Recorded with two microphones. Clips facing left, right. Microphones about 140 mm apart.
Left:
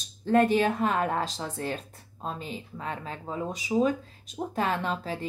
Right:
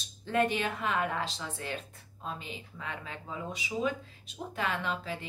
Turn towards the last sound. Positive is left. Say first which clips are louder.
# left 4 dB
turn(degrees=40)  # may be behind; listen again after turning